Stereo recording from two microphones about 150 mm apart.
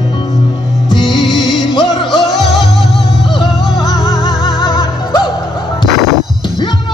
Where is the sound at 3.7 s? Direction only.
25° left (ahead or behind).